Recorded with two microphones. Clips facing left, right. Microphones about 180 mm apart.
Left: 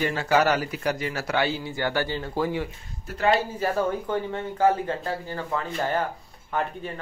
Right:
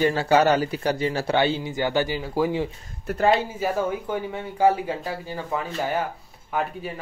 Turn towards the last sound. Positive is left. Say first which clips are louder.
# right 1 dB
turn(degrees=-5)  # may be behind; listen again after turning